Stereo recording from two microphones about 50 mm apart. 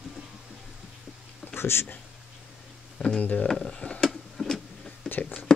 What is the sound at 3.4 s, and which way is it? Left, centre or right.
Speech, centre.